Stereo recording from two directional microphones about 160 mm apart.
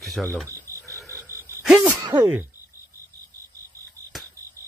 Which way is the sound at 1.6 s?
10° right (ahead or behind).